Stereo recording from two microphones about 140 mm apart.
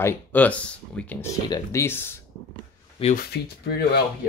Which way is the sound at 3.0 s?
40° left (ahead or behind).